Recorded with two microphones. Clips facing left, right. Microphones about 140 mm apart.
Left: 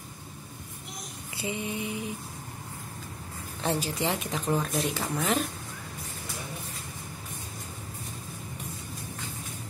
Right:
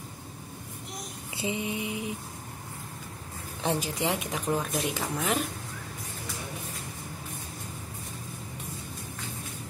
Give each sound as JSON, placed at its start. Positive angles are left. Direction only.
{"t": 1.3, "sound": "speech", "side_deg": -20}
{"t": 3.6, "sound": "speech", "side_deg": -15}